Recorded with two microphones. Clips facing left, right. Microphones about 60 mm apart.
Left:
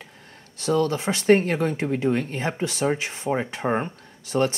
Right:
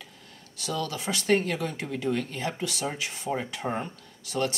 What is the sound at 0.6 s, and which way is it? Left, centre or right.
Speech, left.